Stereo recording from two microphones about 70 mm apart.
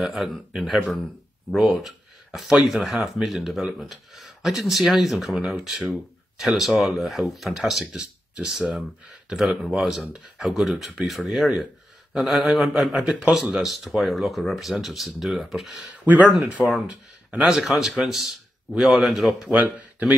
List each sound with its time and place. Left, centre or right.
0.0 s speech: centre
13.0 s speech: centre
13.6 s a man's voice: centre
19.4 s speech: centre